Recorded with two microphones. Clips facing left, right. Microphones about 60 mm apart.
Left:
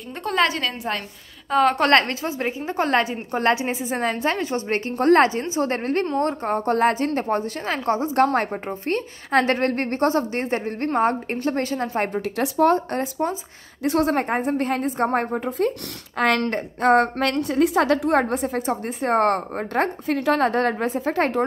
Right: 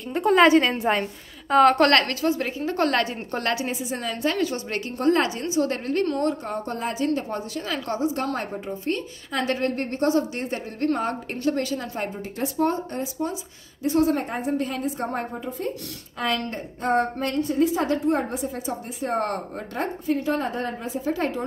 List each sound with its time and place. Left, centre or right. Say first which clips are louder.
0.1 s a woman's voice: right 4 dB; centre
0.5 s a woman's voice: right 7 dB; right
1.5 s a woman's voice: right 2 dB; centre
1.9 s a woman's voice: left 2 dB; left
3.4 s a woman's voice: left 6 dB; left
6.0 s a woman's voice: left 1 dB; left
6.4 s a woman's voice: left 9 dB; left
8.3 s a woman's voice: left 5 dB; left
12.1 s a woman's voice: left 5 dB; left
18.3 s a woman's voice: left 5 dB; left